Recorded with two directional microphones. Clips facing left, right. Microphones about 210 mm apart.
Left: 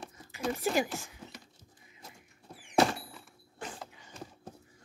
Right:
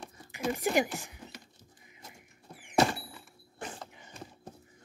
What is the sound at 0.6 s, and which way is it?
Speech, 15° right (ahead or behind).